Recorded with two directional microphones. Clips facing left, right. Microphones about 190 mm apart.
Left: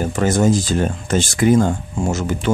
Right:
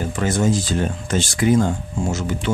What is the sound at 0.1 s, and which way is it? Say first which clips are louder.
Speech: left 3 dB; 45° left (ahead or behind).